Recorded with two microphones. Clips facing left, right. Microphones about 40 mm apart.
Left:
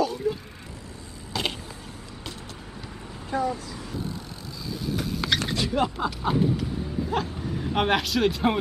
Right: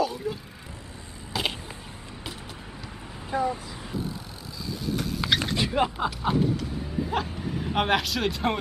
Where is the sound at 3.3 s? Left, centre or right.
Centre.